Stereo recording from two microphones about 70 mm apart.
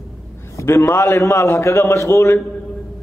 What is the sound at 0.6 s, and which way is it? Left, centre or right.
A man's voice, left.